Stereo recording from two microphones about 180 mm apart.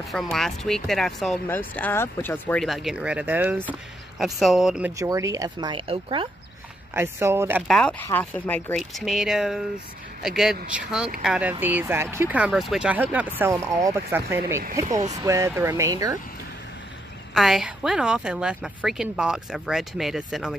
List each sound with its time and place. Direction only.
0.1 s a woman's voice: centre (ahead or behind)
4.9 s speech: 20° right (ahead or behind)
6.9 s speech: 15° right (ahead or behind)
7.6 s a woman's voice: 5° left (ahead or behind); by 14.4 s 15° right (ahead or behind)
14.9 s speech: 40° right (ahead or behind)
15.1 s speech: 15° right (ahead or behind)
17.3 s a woman's voice: centre (ahead or behind)